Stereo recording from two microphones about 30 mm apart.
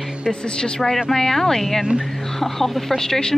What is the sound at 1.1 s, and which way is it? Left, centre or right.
Speech, centre.